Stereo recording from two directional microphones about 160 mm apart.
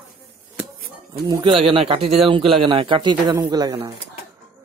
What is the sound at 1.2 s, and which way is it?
Speech, 30° right (ahead or behind).